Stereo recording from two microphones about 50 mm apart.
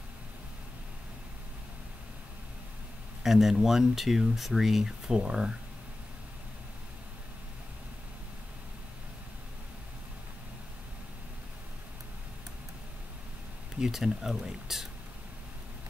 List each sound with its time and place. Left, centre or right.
3.3 s speech: centre
5.0 s speech: centre
13.7 s speech: centre